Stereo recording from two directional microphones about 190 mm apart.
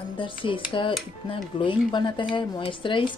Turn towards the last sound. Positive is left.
turn(degrees=25)  # may be behind; listen again after turning